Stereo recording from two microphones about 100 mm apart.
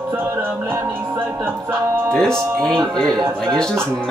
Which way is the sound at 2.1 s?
5° left (ahead or behind).